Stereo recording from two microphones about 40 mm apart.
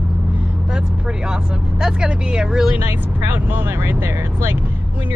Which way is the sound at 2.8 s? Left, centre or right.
Right.